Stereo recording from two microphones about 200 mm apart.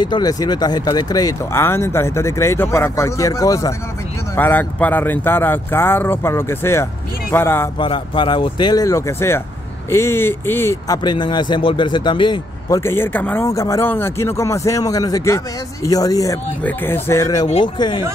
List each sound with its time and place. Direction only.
0.0 s speech: 20° left (ahead or behind)
7.8 s speech: 25° left (ahead or behind)